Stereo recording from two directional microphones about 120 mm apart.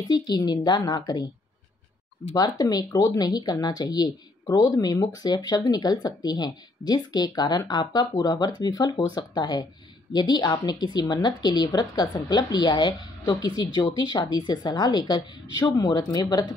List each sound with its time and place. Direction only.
0.1 s speech: 35° left (ahead or behind)
2.3 s speech: 30° left (ahead or behind)